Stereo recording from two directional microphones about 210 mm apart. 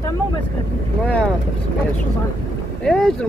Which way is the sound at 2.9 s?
Centre (ahead or behind).